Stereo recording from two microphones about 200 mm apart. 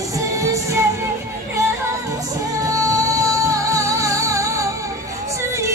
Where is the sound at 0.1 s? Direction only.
15° right (ahead or behind).